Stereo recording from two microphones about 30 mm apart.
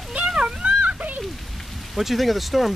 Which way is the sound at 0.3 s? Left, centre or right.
Right.